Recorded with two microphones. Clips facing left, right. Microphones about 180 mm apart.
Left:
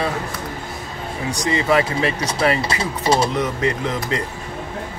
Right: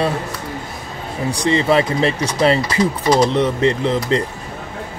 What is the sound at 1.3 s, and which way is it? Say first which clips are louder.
Speech: right 3 dB; 30° right (ahead or behind).